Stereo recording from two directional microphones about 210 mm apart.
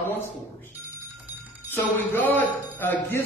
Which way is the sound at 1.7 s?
10° left (ahead or behind).